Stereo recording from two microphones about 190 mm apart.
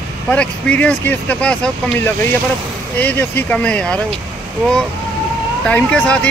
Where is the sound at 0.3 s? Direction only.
5° left (ahead or behind).